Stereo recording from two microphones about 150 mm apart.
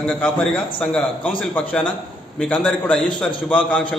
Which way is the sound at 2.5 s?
5° left (ahead or behind).